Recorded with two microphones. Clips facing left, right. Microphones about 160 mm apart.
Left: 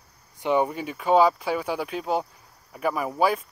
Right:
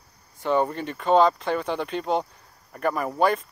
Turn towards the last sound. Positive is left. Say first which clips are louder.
# right 1 dB
turn(degrees=5)  # may be behind; listen again after turning